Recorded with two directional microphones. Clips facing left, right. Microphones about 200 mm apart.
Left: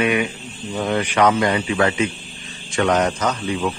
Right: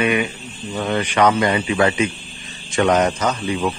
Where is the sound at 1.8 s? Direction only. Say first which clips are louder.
Right 1 dB; 15° right (ahead or behind).